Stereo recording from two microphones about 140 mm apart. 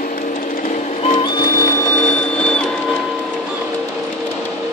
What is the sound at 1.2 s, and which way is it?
Printer, 30° left (ahead or behind).